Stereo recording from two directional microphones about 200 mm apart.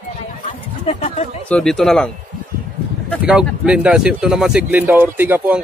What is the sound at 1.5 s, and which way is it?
Speech, 5° left (ahead or behind).